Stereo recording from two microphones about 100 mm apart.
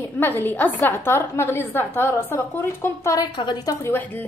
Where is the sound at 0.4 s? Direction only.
20° left (ahead or behind).